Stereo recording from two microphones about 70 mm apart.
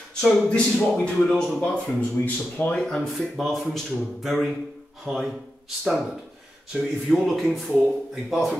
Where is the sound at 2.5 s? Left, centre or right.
Centre.